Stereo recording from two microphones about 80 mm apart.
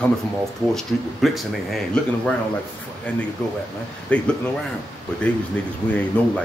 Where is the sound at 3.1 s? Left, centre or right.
Centre.